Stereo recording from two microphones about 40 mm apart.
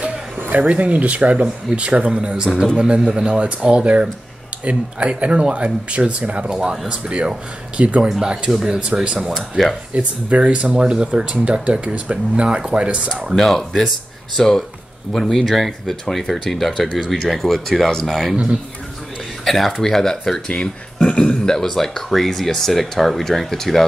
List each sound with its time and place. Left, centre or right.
0.5 s speech: right
2.4 s a man's voice: centre
2.8 s speech: right
6.5 s a man's voice: centre
8.5 s a man's voice: centre
8.7 s speech: right
9.6 s speech: centre
9.9 s speech: right
13.4 s speech: centre
19.4 s speech: centre
20.4 s speech: left
21.5 s speech: centre